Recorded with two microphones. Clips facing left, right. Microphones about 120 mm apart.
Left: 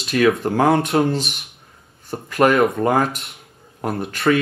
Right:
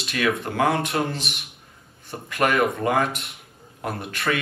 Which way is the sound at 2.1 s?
30° left (ahead or behind).